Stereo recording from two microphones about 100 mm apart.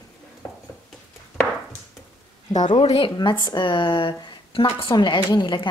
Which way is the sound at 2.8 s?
65° left (ahead or behind).